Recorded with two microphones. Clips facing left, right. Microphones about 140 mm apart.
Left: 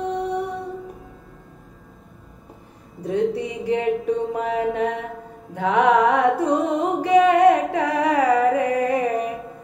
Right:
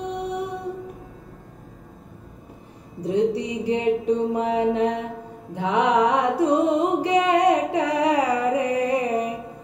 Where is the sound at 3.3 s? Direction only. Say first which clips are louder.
Left 1 dB; 55° left (ahead or behind).